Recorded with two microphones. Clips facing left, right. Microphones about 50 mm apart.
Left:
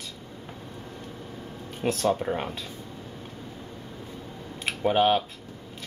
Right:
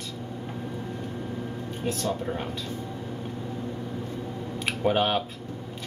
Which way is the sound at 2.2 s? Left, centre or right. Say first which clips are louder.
Left 2 dB; left.